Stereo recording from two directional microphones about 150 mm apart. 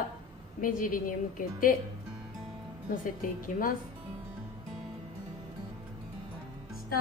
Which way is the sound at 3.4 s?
70° left (ahead or behind).